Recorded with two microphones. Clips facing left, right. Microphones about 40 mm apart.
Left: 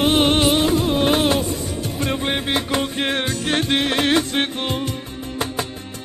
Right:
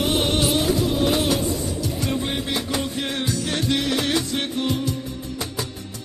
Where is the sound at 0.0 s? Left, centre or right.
Left.